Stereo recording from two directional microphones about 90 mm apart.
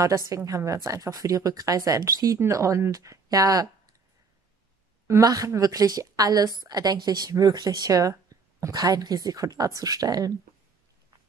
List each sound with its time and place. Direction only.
0.4 s a woman's voice: 35° right (ahead or behind)
5.2 s speech: 40° right (ahead or behind)